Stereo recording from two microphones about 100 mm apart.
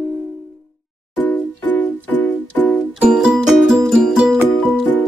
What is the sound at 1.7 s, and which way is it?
Music, 15° left (ahead or behind).